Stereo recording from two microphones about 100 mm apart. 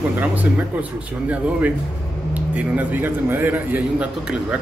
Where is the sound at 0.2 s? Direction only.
15° right (ahead or behind).